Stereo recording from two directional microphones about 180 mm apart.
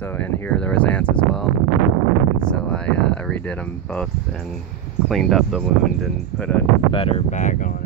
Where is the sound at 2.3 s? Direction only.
5° left (ahead or behind).